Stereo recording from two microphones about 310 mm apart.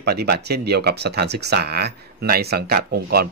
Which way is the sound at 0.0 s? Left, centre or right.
Right.